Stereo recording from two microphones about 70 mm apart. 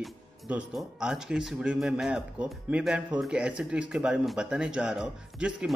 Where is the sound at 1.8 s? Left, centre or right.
Centre.